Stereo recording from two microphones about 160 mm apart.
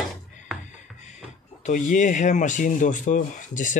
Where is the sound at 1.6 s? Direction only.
50° left (ahead or behind).